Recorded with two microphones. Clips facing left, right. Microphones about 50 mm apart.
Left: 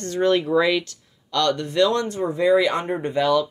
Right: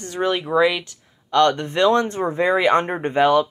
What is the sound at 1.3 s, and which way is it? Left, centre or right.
Speech, right.